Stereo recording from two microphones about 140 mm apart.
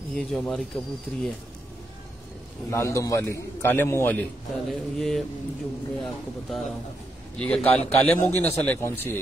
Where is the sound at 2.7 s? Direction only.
20° left (ahead or behind).